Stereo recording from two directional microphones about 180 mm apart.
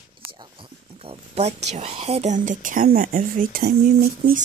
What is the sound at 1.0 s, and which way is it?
Speech, 35° right (ahead or behind).